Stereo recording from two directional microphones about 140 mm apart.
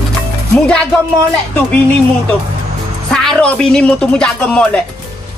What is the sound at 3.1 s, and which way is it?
Speech, 5° left (ahead or behind).